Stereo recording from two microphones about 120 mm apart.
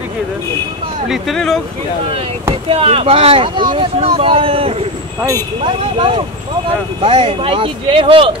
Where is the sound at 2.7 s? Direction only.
50° right (ahead or behind).